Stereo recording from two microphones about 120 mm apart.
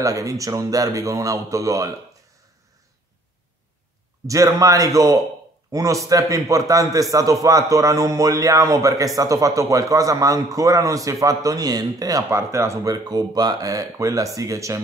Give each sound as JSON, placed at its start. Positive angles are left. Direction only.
{"t": 0.0, "sound": "a man's voice", "side_deg": -30}
{"t": 4.3, "sound": "a man's voice", "side_deg": -25}